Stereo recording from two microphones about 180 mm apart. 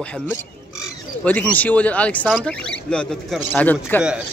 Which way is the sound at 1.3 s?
10° left (ahead or behind).